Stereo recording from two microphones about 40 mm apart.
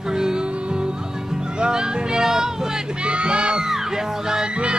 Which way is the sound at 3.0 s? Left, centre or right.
Right.